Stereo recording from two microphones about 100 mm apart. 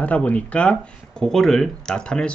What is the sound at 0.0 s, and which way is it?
Speech, 15° left (ahead or behind).